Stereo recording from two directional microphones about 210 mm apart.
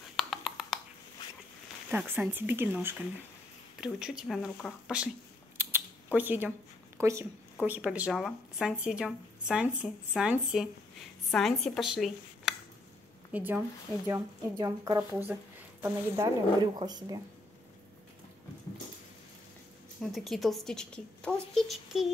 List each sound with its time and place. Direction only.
0.1 s a sound: centre (ahead or behind)
1.9 s speech: 10° right (ahead or behind)
6.1 s a woman's voice: 10° right (ahead or behind)
20.0 s speech: centre (ahead or behind)